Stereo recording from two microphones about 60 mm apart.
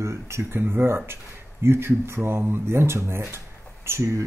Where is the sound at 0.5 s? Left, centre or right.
Right.